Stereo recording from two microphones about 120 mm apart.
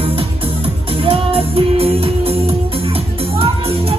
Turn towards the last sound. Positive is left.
turn(degrees=-50)  # may be behind; listen again after turning